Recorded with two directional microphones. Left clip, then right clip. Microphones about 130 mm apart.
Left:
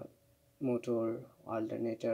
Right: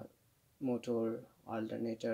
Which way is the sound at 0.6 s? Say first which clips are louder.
Left 2 dB; 25° right (ahead or behind).